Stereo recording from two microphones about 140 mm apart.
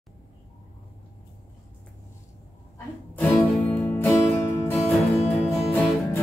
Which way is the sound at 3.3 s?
15° left (ahead or behind).